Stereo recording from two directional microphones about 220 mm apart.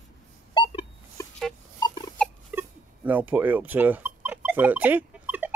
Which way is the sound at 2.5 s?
5° right (ahead or behind).